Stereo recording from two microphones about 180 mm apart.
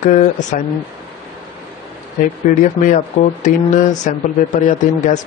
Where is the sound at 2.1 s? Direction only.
45° left (ahead or behind).